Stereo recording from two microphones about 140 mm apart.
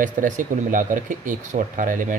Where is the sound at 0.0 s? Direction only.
70° right (ahead or behind).